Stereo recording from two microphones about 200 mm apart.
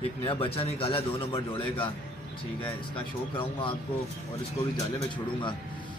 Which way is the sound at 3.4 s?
25° left (ahead or behind).